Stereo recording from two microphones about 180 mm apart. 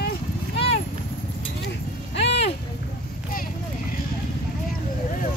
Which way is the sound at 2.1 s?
75° left (ahead or behind).